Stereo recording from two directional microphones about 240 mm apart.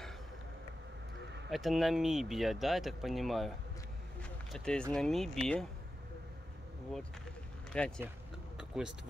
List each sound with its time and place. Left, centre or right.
1.5 s speech: centre
4.2 s a sound: centre
4.9 s speech: centre
7.7 s speech: centre
8.5 s vehicle: centre